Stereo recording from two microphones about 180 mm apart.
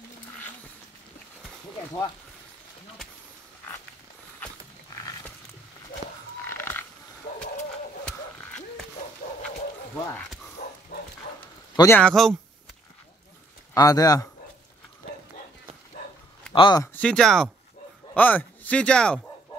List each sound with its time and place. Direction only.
6.4 s a sound: 10° left (ahead or behind)
10.6 s dog: 55° left (ahead or behind)
11.7 s speech: 20° left (ahead or behind)
12.0 s speech: centre (ahead or behind)
13.7 s speech: 20° left (ahead or behind)
16.5 s speech: 25° left (ahead or behind)
16.9 s speech: 5° left (ahead or behind)